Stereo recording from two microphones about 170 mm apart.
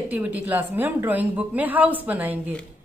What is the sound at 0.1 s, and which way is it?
A woman's voice, 10° right (ahead or behind).